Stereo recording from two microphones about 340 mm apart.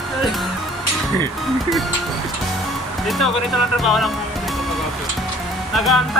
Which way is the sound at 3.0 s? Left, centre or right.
Centre.